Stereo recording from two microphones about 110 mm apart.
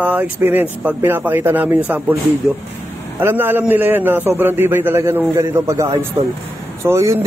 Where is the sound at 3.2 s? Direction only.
20° right (ahead or behind).